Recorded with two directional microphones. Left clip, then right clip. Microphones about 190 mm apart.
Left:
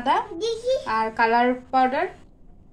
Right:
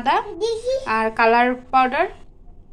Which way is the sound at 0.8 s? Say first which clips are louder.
Right 7 dB; 15° right (ahead or behind).